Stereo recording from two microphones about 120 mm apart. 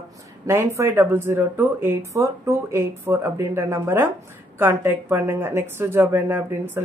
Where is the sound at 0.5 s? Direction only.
20° right (ahead or behind).